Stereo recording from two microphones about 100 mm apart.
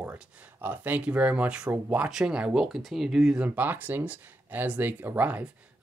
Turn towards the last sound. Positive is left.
turn(degrees=-15)  # may be behind; listen again after turning